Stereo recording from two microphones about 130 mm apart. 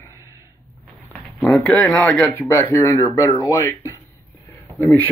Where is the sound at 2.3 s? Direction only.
20° left (ahead or behind).